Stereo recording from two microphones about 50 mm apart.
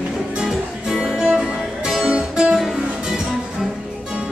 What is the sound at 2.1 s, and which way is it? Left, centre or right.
Guitar, centre.